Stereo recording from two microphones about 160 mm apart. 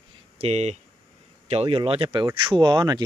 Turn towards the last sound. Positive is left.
turn(degrees=-25)  # may be behind; listen again after turning